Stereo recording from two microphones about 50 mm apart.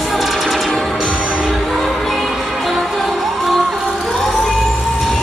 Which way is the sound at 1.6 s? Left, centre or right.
Centre.